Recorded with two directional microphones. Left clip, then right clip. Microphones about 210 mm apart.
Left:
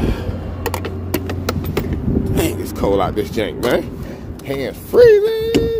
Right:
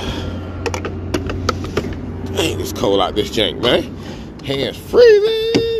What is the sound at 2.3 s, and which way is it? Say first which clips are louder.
Speech: right 5 dB; 20° left (ahead or behind).